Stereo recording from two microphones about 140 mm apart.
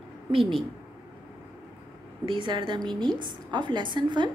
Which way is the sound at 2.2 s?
35° right (ahead or behind).